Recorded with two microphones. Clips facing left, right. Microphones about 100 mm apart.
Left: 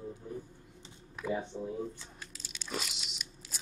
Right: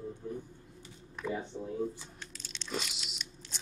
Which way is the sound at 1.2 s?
5° left (ahead or behind).